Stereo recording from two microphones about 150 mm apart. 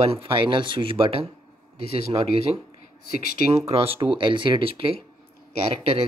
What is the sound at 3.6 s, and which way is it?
Speech, 40° right (ahead or behind).